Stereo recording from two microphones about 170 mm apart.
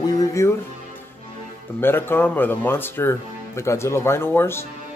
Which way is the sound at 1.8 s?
10° left (ahead or behind).